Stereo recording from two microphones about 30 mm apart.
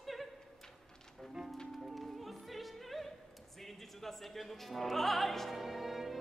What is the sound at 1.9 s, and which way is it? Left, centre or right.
Music, centre.